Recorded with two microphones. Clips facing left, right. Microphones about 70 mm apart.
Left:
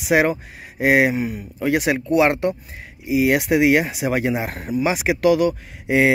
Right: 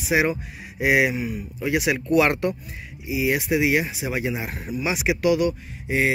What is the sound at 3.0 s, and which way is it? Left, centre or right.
Speech, left.